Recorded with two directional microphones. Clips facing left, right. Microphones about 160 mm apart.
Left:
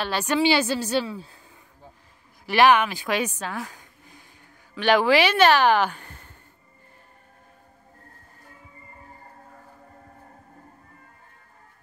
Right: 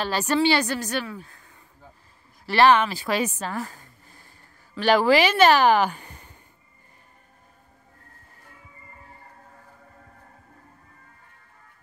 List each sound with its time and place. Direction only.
0.0 s speech: 5° right (ahead or behind)
0.7 s speech: 25° left (ahead or behind)
2.4 s speech: 5° left (ahead or behind)
3.6 s a sound: centre (ahead or behind)
4.7 s speech: 5° right (ahead or behind)